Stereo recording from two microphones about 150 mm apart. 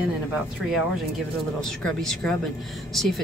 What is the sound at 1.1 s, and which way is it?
A woman's voice, centre (ahead or behind).